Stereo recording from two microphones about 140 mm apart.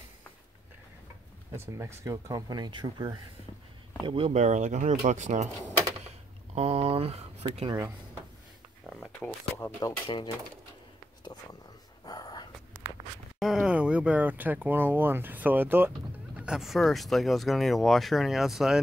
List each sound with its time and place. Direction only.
1.5 s speech: 20° right (ahead or behind)
4.0 s speech: 40° right (ahead or behind)
4.4 s speech: 55° right (ahead or behind)
6.5 s speech: 50° right (ahead or behind)
9.6 s speech: 25° left (ahead or behind)
12.1 s a sound: 25° left (ahead or behind)
12.8 s zipper: 15° right (ahead or behind)
13.4 s speech: 5° right (ahead or behind)